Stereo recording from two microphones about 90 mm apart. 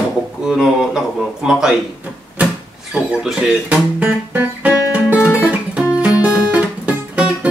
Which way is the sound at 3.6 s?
20° right (ahead or behind).